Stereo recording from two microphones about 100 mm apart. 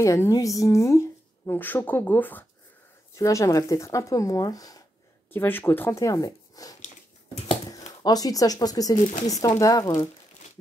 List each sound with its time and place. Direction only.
0.0 s a woman's voice: 30° left (ahead or behind)
3.2 s speech: 30° left (ahead or behind)
5.3 s a woman's voice: 20° left (ahead or behind)
5.9 s speech: 35° left (ahead or behind)